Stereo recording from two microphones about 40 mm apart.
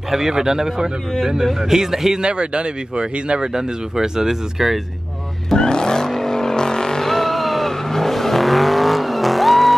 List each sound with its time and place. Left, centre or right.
0.1 s speech: centre
2.2 s speech: right; by 4.7 s centre
5.5 s vehicle: centre